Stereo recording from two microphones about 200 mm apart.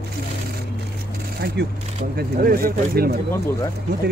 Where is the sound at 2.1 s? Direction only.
50° right (ahead or behind).